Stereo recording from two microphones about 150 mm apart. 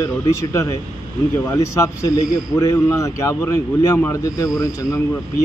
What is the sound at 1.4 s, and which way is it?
A man's voice, 20° left (ahead or behind).